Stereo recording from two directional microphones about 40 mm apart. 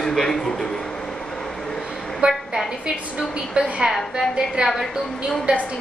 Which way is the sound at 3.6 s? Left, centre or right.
Right.